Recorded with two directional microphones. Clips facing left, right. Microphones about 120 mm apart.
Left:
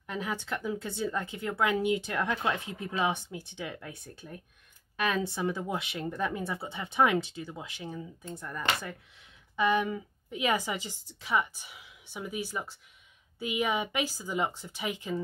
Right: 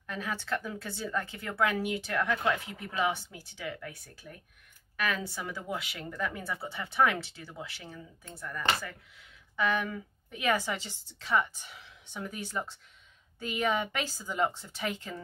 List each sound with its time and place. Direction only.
0.0 s speech: 20° left (ahead or behind)